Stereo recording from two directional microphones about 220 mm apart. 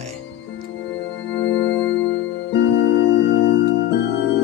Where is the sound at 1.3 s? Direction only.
55° left (ahead or behind).